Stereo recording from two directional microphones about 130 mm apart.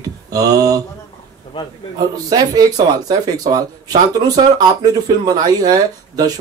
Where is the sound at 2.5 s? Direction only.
30° right (ahead or behind).